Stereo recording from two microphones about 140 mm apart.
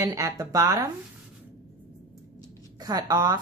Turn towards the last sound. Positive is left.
turn(degrees=-25)  # may be behind; listen again after turning